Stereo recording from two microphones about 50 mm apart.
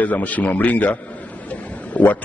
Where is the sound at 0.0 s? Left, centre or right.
Left.